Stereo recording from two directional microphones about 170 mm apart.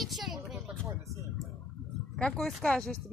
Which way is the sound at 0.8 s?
15° right (ahead or behind).